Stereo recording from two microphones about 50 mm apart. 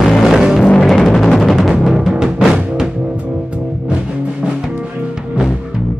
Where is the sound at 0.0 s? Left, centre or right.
Centre.